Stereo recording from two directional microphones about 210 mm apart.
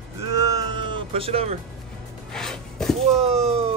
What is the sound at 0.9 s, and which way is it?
Music, 25° right (ahead or behind).